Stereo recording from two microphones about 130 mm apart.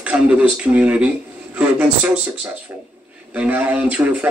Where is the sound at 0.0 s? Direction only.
10° right (ahead or behind).